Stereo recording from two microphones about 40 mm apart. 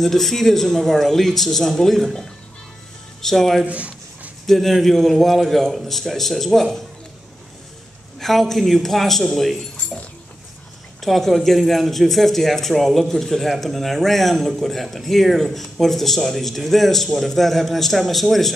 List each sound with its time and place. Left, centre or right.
0.0 s a man's voice: centre
3.2 s a man's voice: centre
3.6 s a sound: right
4.5 s a man's voice: centre
8.2 s a man's voice: centre
11.0 s a man's voice: centre